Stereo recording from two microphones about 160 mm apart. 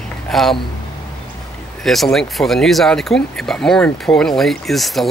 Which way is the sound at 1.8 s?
Centre (ahead or behind).